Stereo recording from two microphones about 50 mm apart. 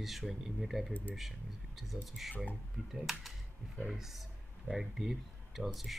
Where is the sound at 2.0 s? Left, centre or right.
Centre.